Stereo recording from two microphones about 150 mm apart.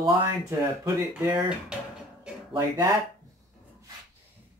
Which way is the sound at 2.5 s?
20° right (ahead or behind).